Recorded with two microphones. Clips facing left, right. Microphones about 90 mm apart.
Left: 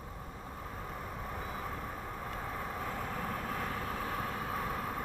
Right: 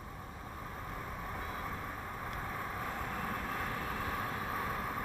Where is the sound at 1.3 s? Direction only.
10° left (ahead or behind).